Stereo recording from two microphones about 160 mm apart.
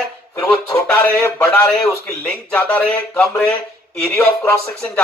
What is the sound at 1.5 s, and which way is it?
A man's voice, 5° left (ahead or behind).